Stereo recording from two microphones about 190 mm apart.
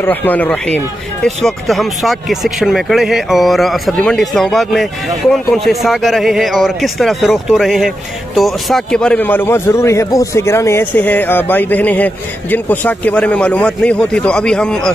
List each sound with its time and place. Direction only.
0.0 s a man's voice: 10° left (ahead or behind)